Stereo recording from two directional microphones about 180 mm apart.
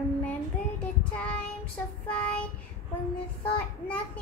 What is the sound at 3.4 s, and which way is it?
Child singing, 5° left (ahead or behind).